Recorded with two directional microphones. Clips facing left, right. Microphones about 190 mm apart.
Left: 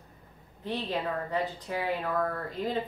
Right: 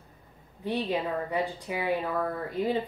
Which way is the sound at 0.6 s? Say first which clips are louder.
Right 3 dB; 10° right (ahead or behind).